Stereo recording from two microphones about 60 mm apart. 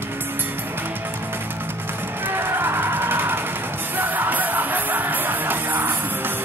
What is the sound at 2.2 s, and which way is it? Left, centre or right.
Music, right.